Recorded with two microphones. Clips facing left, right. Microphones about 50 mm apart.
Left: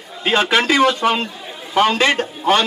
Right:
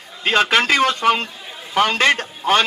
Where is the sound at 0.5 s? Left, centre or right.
Right.